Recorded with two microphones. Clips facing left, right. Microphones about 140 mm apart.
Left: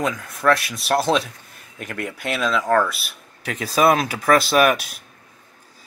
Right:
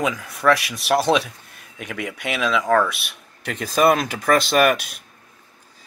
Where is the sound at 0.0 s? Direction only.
Centre (ahead or behind).